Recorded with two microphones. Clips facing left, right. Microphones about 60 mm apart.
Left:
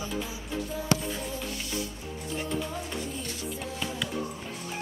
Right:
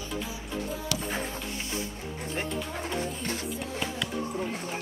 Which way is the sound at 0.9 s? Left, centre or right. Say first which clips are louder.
Left 9 dB; left.